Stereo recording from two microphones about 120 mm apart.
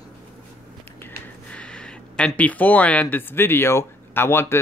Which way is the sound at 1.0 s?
10° left (ahead or behind).